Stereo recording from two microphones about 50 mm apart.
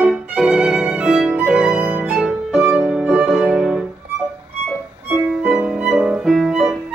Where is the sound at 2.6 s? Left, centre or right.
Right.